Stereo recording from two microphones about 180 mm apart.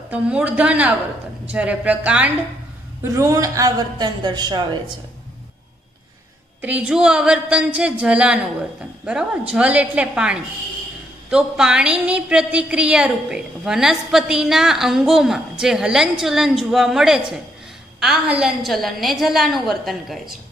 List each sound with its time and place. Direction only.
0.1 s a woman's voice: 5° right (ahead or behind); by 4.7 s 25° right (ahead or behind)
6.6 s a woman's voice: 5° right (ahead or behind)
9.5 s a woman's voice: 5° right (ahead or behind)